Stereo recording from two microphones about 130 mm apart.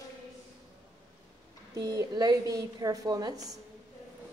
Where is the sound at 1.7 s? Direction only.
25° right (ahead or behind).